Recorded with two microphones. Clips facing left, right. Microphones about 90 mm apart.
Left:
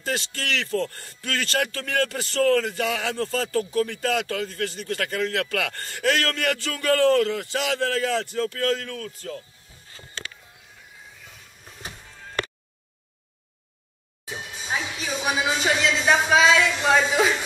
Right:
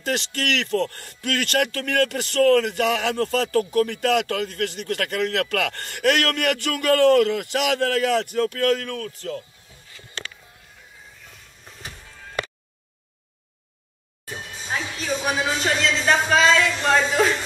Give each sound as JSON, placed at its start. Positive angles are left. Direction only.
{"t": 0.0, "sound": "a man's voice", "side_deg": -60}
{"t": 10.2, "sound": "music", "side_deg": 5}
{"t": 14.2, "sound": "speech", "side_deg": 5}